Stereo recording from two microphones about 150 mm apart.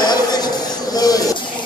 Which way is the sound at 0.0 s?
25° left (ahead or behind).